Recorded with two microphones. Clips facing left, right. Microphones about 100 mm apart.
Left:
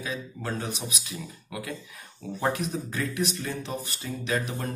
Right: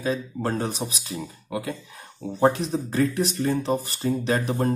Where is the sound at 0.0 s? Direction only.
40° right (ahead or behind).